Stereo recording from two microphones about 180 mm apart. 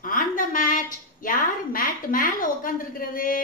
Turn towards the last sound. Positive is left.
turn(degrees=50)  # may be behind; listen again after turning